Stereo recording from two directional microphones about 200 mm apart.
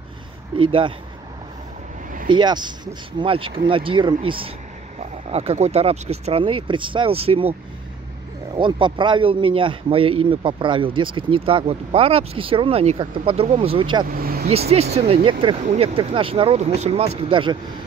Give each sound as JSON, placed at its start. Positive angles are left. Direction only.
{"t": 0.6, "sound": "speech", "side_deg": -25}
{"t": 2.2, "sound": "speech", "side_deg": -20}
{"t": 8.5, "sound": "speech", "side_deg": -25}
{"t": 14.0, "sound": "vehicle", "side_deg": -45}
{"t": 14.5, "sound": "speech", "side_deg": -30}